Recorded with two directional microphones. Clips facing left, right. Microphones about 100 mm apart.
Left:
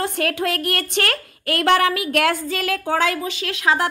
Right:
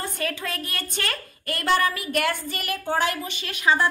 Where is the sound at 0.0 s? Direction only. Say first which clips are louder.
Left 7 dB; 70° left (ahead or behind).